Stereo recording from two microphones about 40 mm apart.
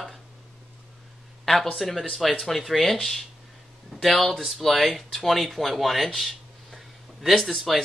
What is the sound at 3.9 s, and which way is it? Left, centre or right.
Speech, centre.